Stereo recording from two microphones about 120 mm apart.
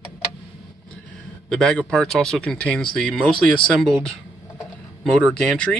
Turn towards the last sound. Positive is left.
turn(degrees=5)  # may be behind; listen again after turning